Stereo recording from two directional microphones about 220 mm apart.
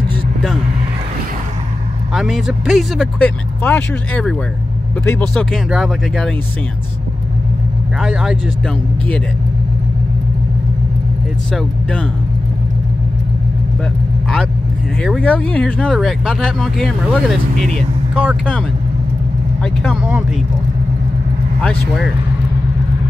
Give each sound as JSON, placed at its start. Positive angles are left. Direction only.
{"t": 2.1, "sound": "speech", "side_deg": 0}
{"t": 8.0, "sound": "speech", "side_deg": 0}
{"t": 11.5, "sound": "speech", "side_deg": 5}
{"t": 15.0, "sound": "speech", "side_deg": 5}
{"t": 17.6, "sound": "speech", "side_deg": -30}
{"t": 18.1, "sound": "speech", "side_deg": -5}
{"t": 19.6, "sound": "speech", "side_deg": 5}
{"t": 21.5, "sound": "speech", "side_deg": 5}